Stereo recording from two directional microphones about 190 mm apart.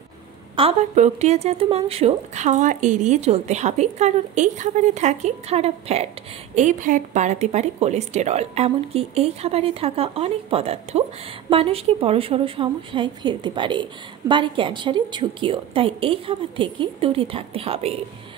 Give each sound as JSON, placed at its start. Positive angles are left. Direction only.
{"t": 0.6, "sound": "a woman's voice", "side_deg": -35}